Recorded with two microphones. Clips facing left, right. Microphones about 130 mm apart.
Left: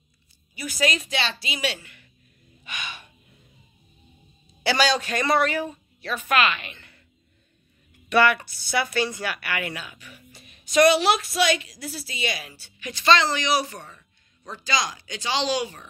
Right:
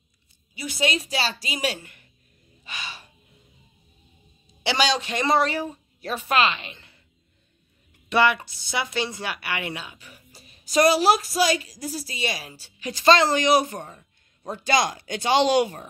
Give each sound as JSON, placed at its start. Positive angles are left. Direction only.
{"t": 0.6, "sound": "a woman's voice", "side_deg": -25}
{"t": 2.6, "sound": "gasp", "side_deg": -30}
{"t": 4.6, "sound": "speech", "side_deg": -20}
{"t": 8.1, "sound": "a woman's voice", "side_deg": -20}